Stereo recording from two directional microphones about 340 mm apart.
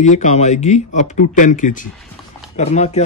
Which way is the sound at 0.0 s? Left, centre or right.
Left.